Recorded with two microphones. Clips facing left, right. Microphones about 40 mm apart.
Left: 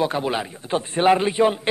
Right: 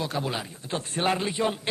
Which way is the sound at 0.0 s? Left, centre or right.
Left.